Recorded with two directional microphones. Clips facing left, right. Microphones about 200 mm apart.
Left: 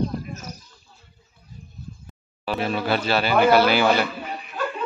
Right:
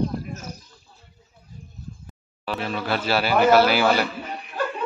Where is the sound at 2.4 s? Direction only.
10° left (ahead or behind).